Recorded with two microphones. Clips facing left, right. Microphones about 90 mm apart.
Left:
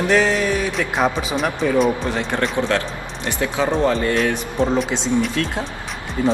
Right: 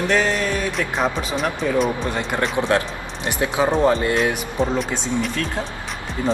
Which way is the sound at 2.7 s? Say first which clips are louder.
Right 1 dB; 20° right (ahead or behind).